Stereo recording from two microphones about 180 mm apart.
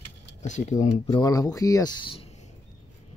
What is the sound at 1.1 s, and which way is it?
Speech, 20° left (ahead or behind).